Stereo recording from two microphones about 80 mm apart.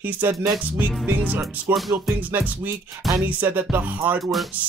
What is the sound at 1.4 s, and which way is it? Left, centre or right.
Music, centre.